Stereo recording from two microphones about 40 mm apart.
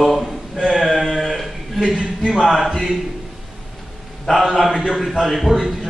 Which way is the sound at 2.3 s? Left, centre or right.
Centre.